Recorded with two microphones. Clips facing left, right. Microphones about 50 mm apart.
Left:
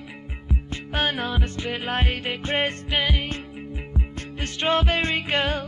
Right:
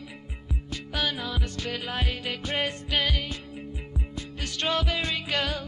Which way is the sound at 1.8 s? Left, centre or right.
Left.